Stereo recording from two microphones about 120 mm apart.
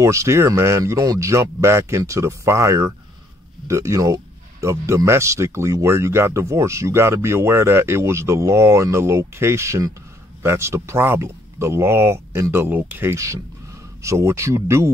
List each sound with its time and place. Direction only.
0.0 s speech: 25° right (ahead or behind)